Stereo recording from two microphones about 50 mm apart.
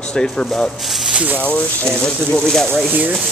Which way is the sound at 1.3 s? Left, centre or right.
Left.